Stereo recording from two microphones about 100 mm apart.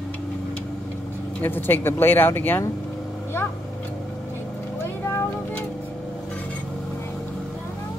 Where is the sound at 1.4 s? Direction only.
20° left (ahead or behind).